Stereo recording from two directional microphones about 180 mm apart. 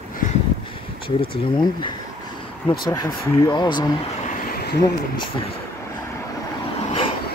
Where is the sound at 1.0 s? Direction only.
25° left (ahead or behind).